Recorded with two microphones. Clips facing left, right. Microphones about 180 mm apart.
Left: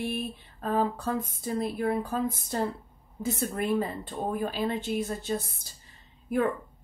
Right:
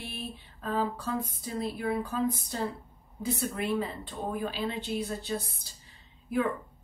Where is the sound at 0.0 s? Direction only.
45° left (ahead or behind).